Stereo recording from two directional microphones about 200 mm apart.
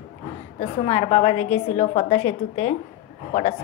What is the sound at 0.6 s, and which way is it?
A woman's voice, 30° left (ahead or behind).